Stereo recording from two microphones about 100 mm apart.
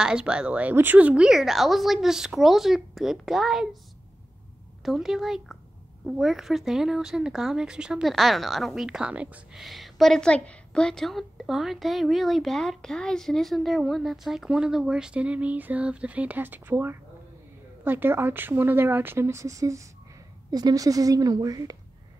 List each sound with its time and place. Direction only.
0.0 s a woman's voice: 10° right (ahead or behind)
4.8 s a woman's voice: 5° right (ahead or behind)
9.6 s a woman's voice: centre (ahead or behind); by 21.7 s 40° right (ahead or behind)